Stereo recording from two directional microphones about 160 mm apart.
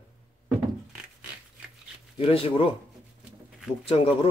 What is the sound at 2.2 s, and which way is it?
Speech, 35° left (ahead or behind).